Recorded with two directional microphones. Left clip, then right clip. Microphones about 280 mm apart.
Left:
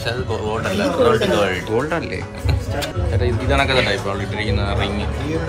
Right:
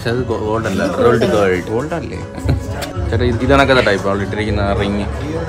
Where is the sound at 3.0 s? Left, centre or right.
Right.